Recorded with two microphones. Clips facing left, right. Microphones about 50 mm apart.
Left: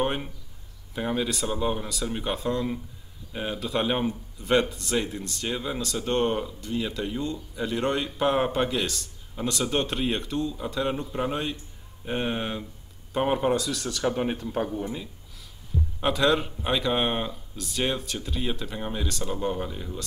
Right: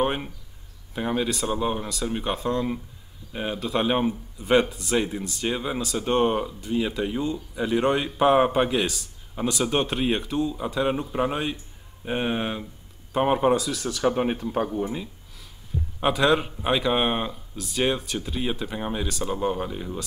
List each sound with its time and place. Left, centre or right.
0.0 s a sound: centre
0.9 s speech: centre
14.0 s speech: centre